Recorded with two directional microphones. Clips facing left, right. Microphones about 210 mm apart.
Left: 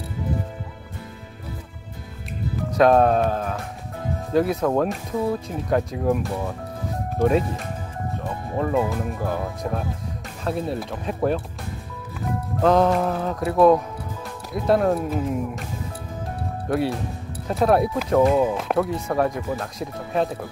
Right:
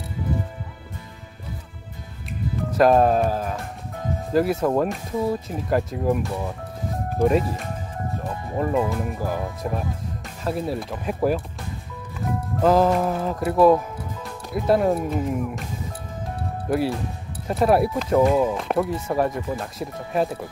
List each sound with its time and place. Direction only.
2.8 s speech: centre (ahead or behind)
16.6 s speech: centre (ahead or behind)